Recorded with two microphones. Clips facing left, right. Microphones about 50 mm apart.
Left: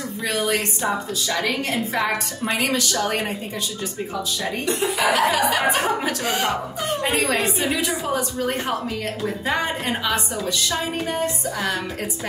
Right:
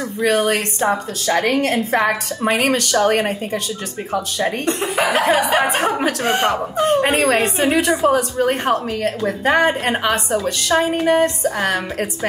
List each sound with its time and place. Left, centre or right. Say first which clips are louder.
0.2 s a woman's voice: right 6 dB; right
7.3 s a woman's voice: right 6 dB; right